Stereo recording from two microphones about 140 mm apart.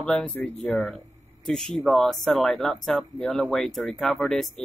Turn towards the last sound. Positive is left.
turn(degrees=0)  # may be behind; listen again after turning